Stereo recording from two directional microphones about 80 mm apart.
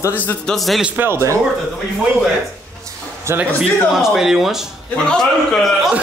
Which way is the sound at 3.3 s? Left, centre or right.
Right.